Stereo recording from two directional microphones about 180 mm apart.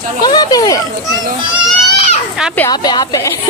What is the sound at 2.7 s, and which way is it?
Speech, 20° left (ahead or behind).